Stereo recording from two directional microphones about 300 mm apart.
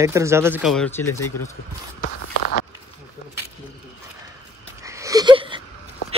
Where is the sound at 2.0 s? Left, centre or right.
Left.